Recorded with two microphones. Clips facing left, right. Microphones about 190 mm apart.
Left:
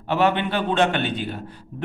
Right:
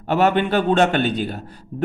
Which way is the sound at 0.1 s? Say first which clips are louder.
Right 3 dB; 45° right (ahead or behind).